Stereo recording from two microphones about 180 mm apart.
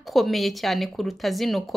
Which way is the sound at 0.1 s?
Centre (ahead or behind).